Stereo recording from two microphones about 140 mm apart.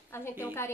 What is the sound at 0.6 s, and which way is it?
Speech, 20° left (ahead or behind).